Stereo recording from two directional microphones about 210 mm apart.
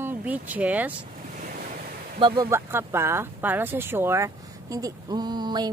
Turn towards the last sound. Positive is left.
turn(degrees=-20)  # may be behind; listen again after turning